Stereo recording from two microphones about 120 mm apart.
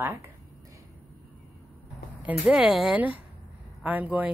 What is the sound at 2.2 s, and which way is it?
Speech, 10° right (ahead or behind).